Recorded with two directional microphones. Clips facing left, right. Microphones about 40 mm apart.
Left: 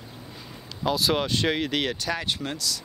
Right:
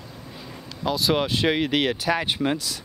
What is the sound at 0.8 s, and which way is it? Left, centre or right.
Speech, centre.